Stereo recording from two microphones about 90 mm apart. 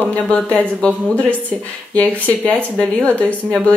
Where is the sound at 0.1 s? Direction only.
15° left (ahead or behind).